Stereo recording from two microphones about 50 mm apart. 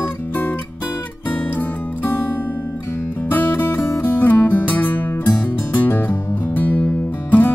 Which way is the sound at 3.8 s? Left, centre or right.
Left.